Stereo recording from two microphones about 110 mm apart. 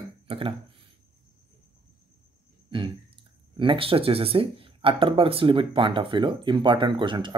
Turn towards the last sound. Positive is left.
turn(degrees=-45)  # may be behind; listen again after turning